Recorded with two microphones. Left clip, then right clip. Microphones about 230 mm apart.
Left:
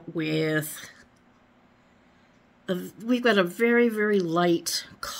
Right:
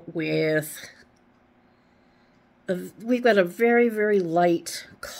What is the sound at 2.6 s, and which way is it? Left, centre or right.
A woman's voice, left.